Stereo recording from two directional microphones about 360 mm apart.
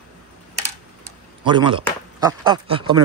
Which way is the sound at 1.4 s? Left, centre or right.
Centre.